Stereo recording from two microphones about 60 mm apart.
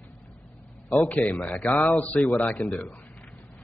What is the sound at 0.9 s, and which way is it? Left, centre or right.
A man's voice, left.